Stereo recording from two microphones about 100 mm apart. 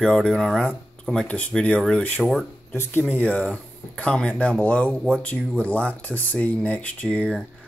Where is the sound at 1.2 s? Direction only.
15° left (ahead or behind).